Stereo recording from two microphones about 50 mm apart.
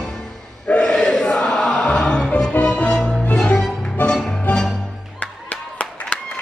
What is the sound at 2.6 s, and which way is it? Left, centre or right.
Music, left.